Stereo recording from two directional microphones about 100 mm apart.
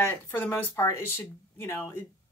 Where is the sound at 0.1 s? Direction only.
25° left (ahead or behind).